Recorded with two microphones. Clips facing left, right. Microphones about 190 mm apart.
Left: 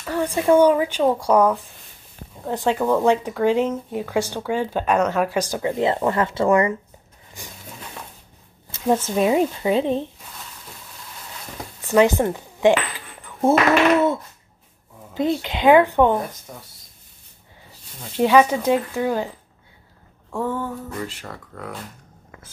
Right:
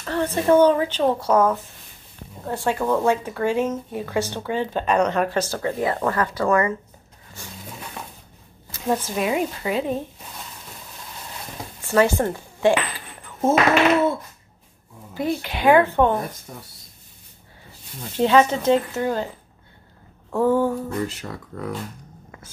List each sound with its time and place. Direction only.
0.0 s speech: 10° left (ahead or behind)
2.5 s speech: 15° left (ahead or behind)
7.4 s roaring cats: 15° left (ahead or behind)
8.9 s a woman's voice: 25° left (ahead or behind)
11.8 s speech: 15° left (ahead or behind)
15.1 s speech: 20° left (ahead or behind)
18.2 s speech: 15° left (ahead or behind)
20.2 s a sound: 5° right (ahead or behind)